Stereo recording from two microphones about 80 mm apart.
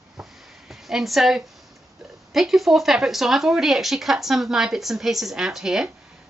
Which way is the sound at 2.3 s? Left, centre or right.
Centre.